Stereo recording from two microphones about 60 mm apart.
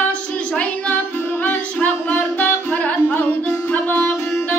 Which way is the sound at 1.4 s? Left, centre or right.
Left.